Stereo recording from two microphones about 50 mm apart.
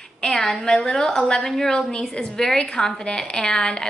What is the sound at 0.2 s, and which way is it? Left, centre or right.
A woman's voice, centre.